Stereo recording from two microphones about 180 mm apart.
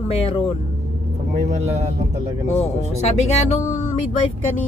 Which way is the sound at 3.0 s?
35° left (ahead or behind).